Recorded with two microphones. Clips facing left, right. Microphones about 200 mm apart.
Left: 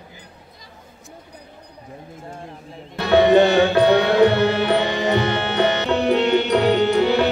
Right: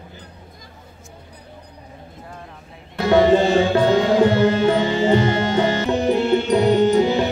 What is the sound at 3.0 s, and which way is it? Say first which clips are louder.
Music: left 1 dB; 65° left (ahead or behind).